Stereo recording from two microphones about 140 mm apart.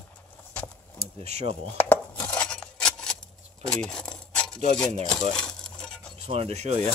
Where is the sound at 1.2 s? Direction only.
50° right (ahead or behind).